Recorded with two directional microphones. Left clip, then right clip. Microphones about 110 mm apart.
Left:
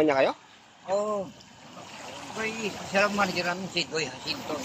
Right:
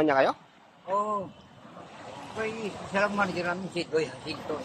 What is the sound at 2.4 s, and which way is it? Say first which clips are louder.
A man's voice: left 1 dB; 15° right (ahead or behind).